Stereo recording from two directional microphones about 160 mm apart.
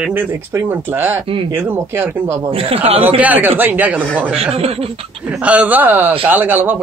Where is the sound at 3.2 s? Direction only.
10° right (ahead or behind).